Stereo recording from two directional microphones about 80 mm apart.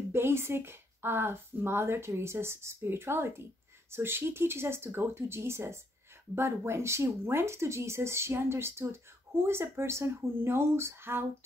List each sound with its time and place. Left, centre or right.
0.1 s a woman's voice: right